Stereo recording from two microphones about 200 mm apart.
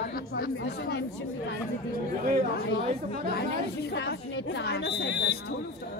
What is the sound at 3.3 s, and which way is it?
Speech, 55° left (ahead or behind).